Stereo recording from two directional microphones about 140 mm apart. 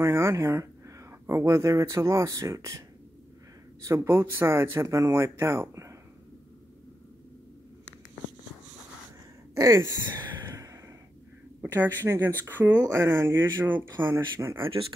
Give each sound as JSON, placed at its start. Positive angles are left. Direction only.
{"t": 0.0, "sound": "speech", "side_deg": -20}
{"t": 3.8, "sound": "speech", "side_deg": -20}
{"t": 9.6, "sound": "a sound", "side_deg": -25}
{"t": 11.6, "sound": "speech", "side_deg": -15}
{"t": 14.7, "sound": "speech", "side_deg": -40}